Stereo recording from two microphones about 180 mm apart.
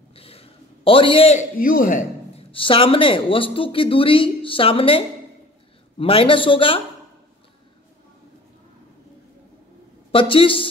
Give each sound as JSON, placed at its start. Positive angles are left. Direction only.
{"t": 0.1, "sound": "a sound", "side_deg": 35}
{"t": 1.6, "sound": "speech", "side_deg": 50}
{"t": 2.5, "sound": "speech", "side_deg": 30}
{"t": 10.1, "sound": "speech", "side_deg": 30}